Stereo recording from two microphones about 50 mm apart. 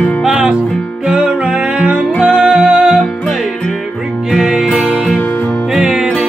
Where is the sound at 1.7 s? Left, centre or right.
Right.